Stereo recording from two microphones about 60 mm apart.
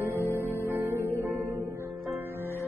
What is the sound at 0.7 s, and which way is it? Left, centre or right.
Music, right.